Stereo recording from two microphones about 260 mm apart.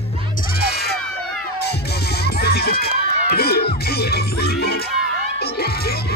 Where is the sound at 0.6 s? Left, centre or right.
Left.